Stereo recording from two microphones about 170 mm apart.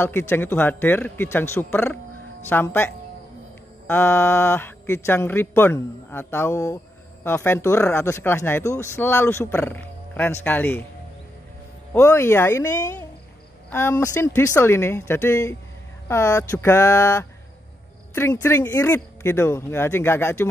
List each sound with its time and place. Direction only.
0.0 s speech: 15° left (ahead or behind)
11.9 s speech: 15° left (ahead or behind)